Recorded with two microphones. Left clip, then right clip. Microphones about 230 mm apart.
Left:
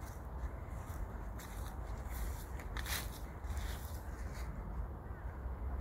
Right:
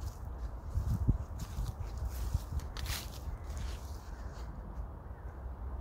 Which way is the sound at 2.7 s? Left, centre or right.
Centre.